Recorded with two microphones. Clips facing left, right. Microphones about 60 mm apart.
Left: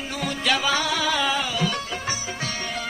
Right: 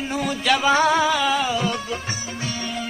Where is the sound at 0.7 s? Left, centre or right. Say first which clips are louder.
Right 7 dB; right.